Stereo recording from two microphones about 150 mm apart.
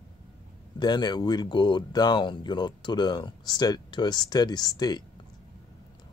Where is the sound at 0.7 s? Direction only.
30° left (ahead or behind).